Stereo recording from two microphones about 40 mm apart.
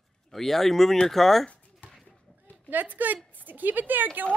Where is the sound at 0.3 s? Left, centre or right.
Centre.